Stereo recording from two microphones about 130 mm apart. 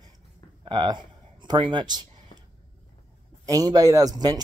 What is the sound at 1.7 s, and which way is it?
Speech, 35° right (ahead or behind).